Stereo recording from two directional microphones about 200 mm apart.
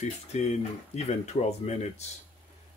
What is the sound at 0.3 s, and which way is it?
Speech, 35° left (ahead or behind).